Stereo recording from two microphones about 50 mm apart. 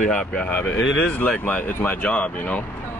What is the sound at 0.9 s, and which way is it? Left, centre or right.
Speech, left.